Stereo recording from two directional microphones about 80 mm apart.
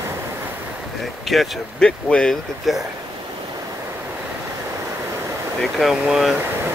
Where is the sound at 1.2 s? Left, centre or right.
Centre.